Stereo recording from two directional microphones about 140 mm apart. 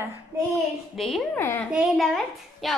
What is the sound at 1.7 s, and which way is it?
A woman's voice, centre (ahead or behind).